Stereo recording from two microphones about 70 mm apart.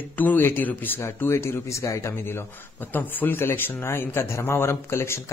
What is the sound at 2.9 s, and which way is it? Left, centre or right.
A man's voice, left.